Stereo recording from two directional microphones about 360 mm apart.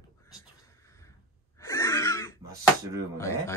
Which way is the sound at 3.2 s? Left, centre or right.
Centre.